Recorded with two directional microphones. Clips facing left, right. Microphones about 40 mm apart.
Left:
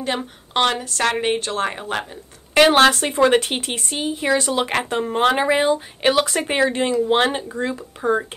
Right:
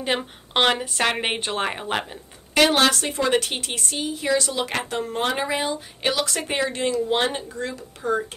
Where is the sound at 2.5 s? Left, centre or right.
Left.